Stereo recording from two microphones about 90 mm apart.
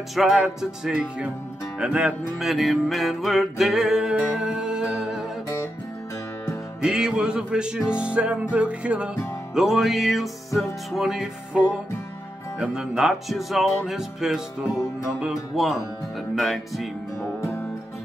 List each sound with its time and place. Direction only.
0.1 s music: centre (ahead or behind)
6.8 s music: 5° right (ahead or behind)
17.4 s music: 25° left (ahead or behind)